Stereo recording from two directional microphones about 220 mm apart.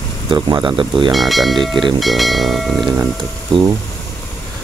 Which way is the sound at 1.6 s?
20° right (ahead or behind).